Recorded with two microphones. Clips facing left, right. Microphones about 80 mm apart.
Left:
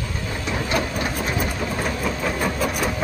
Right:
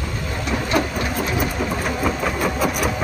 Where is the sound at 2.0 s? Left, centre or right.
Centre.